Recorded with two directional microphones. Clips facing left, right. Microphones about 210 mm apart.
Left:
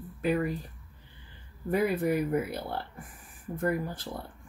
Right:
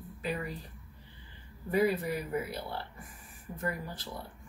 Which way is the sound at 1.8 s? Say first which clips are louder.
Left 5 dB; 55° left (ahead or behind).